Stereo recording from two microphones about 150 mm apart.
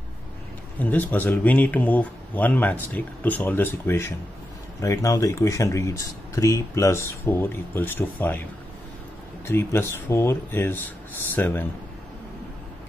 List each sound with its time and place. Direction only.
0.7 s speech: 10° left (ahead or behind)
9.5 s speech: 15° left (ahead or behind)